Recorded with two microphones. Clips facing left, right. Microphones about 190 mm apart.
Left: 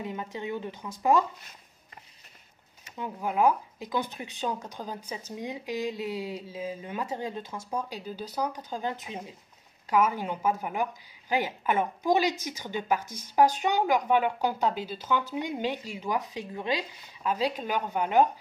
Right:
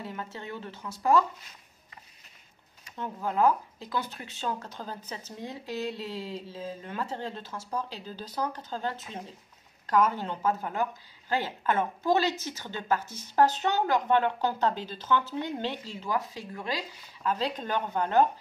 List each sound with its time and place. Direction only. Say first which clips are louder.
0.0 s a woman's voice: left 4 dB; 15° left (ahead or behind)
3.0 s a woman's voice: even; 10° left (ahead or behind)